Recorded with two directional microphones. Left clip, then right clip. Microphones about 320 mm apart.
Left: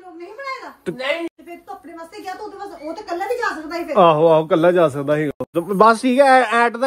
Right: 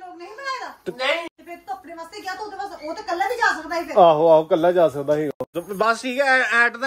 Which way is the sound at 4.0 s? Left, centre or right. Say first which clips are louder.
Left 1 dB; left.